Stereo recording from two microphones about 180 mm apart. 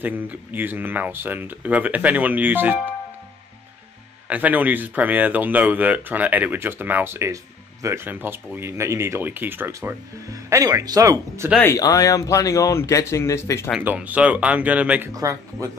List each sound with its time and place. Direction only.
0.0 s speech: 10° right (ahead or behind)
4.3 s speech: 10° right (ahead or behind)
11.5 s speech: 15° left (ahead or behind)
13.7 s speech: 5° right (ahead or behind)
15.1 s speech: 20° right (ahead or behind)